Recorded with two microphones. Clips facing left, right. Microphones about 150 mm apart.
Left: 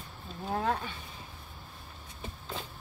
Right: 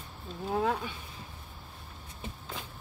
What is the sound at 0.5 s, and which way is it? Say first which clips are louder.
Speech: right 1 dB; 5° right (ahead or behind).